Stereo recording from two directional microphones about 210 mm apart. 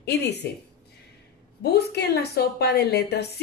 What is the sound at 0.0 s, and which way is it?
Speech, 55° left (ahead or behind).